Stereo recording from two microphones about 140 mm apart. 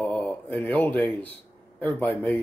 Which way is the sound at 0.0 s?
5° left (ahead or behind).